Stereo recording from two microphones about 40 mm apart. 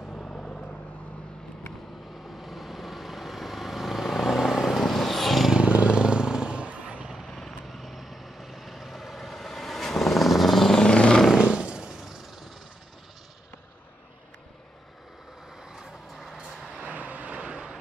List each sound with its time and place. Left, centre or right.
0.1 s vehicle: left
2.2 s vehicle: centre
5.5 s vehicle: right
7.2 s vehicle: centre
7.6 s vehicle: centre
10.8 s vehicle: left
11.3 s a sound: right
15.7 s vehicle: centre
16.8 s vehicle: right